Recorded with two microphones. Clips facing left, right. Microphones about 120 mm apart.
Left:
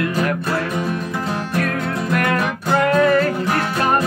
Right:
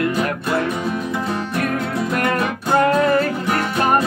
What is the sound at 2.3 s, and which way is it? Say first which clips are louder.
Music: even; 20° right (ahead or behind).